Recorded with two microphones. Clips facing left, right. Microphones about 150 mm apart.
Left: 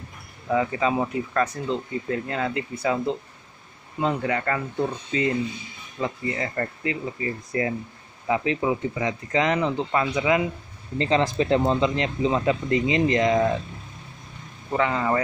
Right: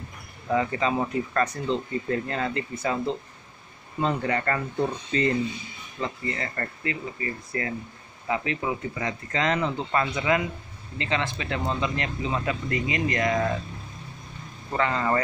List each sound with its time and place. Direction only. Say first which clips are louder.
0.5 s speech: left 2 dB; 5° left (ahead or behind)
11.0 s speech: left 7 dB; 35° left (ahead or behind)
14.7 s speech: left 2 dB; 10° left (ahead or behind)